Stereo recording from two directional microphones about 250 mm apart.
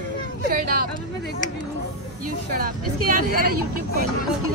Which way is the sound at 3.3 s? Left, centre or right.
Right.